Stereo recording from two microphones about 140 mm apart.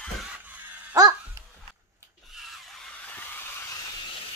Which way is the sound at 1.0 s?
25° right (ahead or behind).